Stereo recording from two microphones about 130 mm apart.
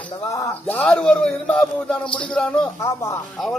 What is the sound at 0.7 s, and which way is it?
A man's voice, 10° left (ahead or behind).